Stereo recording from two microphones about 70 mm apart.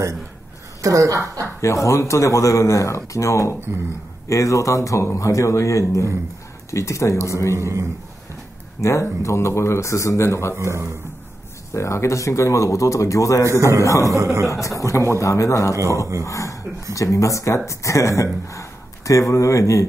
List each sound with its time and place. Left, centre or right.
0.8 s speech: right
1.6 s speech: left
7.5 s speech: right
8.8 s speech: left
10.5 s a man's voice: right
11.7 s speech: left
13.5 s speech: right
13.8 s speech: left
14.1 s speech: right
14.8 s speech: left